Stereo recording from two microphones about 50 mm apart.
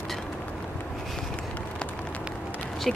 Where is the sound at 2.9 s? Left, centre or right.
Centre.